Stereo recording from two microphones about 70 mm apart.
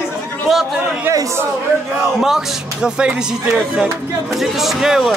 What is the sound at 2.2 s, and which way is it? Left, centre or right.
Speech, centre.